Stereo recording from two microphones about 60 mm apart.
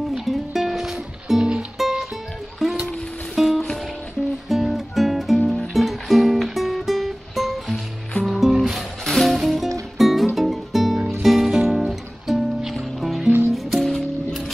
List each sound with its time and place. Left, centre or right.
0.1 s music: centre
13.8 s music: centre